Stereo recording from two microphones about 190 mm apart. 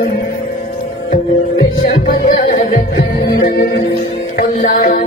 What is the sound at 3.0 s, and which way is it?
Music, 60° left (ahead or behind).